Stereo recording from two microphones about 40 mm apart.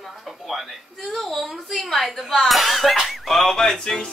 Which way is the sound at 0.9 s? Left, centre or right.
Centre.